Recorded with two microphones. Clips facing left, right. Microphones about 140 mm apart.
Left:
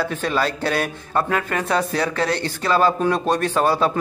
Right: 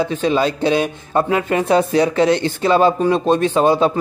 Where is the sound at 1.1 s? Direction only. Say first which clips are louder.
Right 5 dB; 20° right (ahead or behind).